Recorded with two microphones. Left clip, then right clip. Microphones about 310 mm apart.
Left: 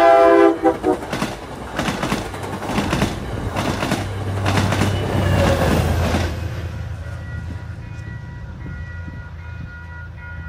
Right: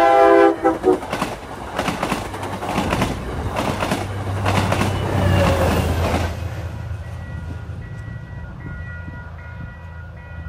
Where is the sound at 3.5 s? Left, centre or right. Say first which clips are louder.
Even; right.